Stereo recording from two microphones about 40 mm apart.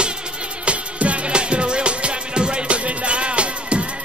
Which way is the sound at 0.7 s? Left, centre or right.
Right.